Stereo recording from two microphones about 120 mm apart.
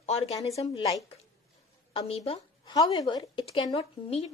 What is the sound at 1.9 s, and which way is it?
Speech, 50° left (ahead or behind).